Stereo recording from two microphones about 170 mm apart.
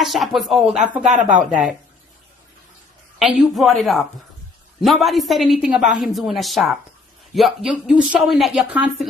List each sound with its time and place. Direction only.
0.0 s a woman's voice: centre (ahead or behind)
3.2 s a woman's voice: centre (ahead or behind)